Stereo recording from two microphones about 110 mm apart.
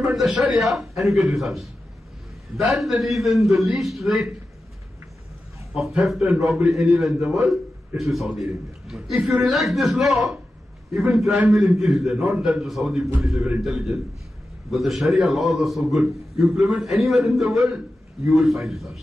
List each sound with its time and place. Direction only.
0.1 s a man's voice: centre (ahead or behind)
2.8 s a man's voice: centre (ahead or behind)
6.1 s a man's voice: 10° right (ahead or behind)